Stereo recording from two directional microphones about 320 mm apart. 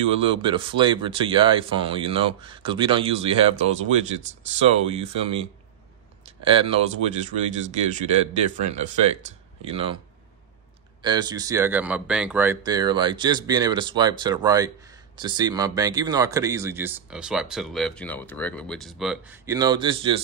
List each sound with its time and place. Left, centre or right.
0.1 s speech: centre
11.0 s speech: centre